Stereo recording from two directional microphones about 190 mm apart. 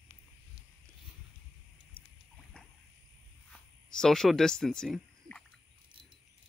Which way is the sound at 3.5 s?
5° left (ahead or behind).